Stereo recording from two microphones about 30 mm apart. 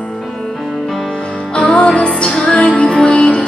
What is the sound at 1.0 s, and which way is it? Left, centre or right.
Music, centre.